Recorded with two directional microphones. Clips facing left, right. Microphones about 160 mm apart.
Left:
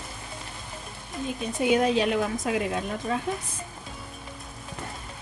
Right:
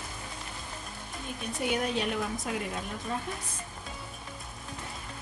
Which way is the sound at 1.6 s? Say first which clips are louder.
Left 8 dB; 90° left.